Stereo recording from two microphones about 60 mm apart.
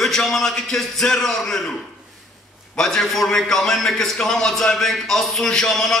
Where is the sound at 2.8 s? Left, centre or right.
Centre.